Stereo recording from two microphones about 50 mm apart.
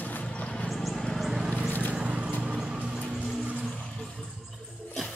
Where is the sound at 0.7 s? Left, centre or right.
Centre.